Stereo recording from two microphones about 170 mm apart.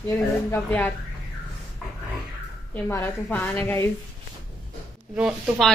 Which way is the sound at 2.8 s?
10° left (ahead or behind).